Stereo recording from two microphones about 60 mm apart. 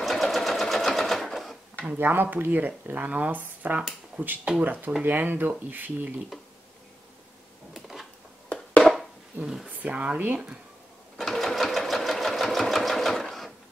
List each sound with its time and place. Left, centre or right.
0.0 s sewing machine: centre
1.9 s speech: right
7.7 s a sound: centre
8.5 s a sound: centre
9.4 s speech: centre
9.7 s speech: right
11.1 s sewing machine: centre